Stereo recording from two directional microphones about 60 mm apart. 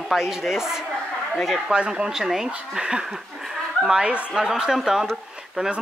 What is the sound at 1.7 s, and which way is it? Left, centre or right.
Speech, centre.